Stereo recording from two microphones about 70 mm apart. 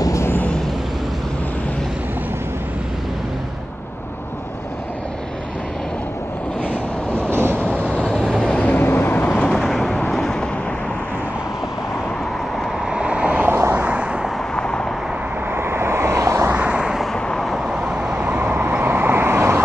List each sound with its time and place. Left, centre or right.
0.0 s vehicle: left
6.6 s vehicle: centre
8.6 s vehicle: left
9.5 s vehicle: centre
12.9 s vehicle: centre
13.5 s vehicle: right
14.5 s vehicle: centre
15.5 s vehicle: right
16.5 s vehicle: centre
17.0 s vehicle: centre
17.6 s vehicle: centre; by 19.6 s right